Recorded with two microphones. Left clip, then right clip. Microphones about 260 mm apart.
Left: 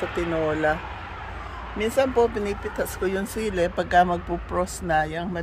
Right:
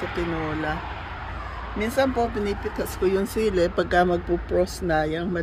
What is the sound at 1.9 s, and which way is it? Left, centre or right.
Speech, centre.